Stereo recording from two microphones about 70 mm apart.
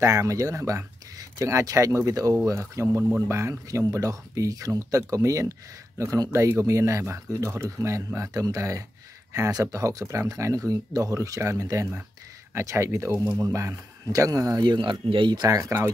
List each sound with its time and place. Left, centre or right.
0.0 s speech: right
15.3 s speech: right